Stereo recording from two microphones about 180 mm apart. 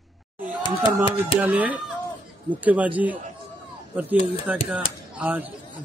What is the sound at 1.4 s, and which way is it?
Speech, 10° right (ahead or behind).